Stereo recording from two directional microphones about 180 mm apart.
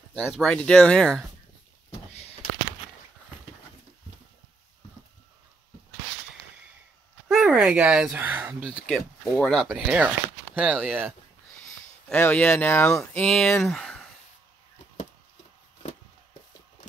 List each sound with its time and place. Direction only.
0.3 s speech: 5° left (ahead or behind)
7.2 s speech: 5° right (ahead or behind)
8.8 s speech: centre (ahead or behind)
9.7 s speech: 5° right (ahead or behind)
12.1 s speech: 10° left (ahead or behind)
13.7 s a sound: centre (ahead or behind)